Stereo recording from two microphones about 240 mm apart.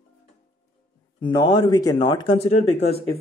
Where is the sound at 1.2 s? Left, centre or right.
Centre.